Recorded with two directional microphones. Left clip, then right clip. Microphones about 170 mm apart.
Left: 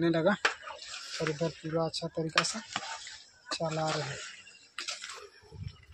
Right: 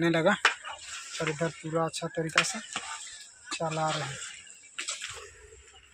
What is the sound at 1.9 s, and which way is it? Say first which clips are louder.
Speech: right 1 dB; 25° right (ahead or behind).